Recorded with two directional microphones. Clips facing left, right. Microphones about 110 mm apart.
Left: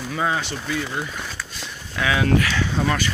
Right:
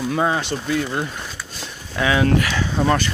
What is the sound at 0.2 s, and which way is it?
Speech, 20° right (ahead or behind).